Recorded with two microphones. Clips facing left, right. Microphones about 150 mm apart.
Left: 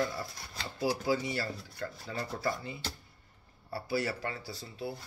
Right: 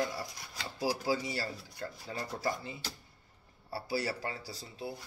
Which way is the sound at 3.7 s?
35° right (ahead or behind).